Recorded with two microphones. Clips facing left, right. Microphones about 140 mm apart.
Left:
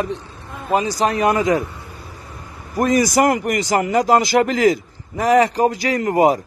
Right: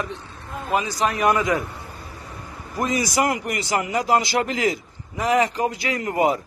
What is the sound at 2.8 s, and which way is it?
A man's voice, 50° left (ahead or behind).